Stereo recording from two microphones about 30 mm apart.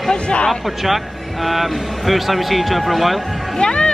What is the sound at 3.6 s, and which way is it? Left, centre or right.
Speech, left.